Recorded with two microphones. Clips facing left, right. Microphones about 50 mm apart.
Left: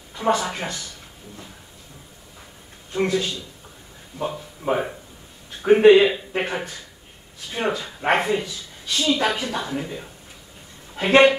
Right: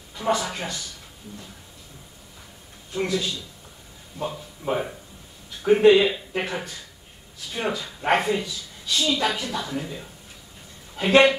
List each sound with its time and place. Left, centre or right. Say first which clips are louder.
0.2 s speech: left 3 dB; left
2.9 s speech: left 3 dB; left
4.2 s speech: left 3 dB; centre
11.0 s speech: left 2 dB; left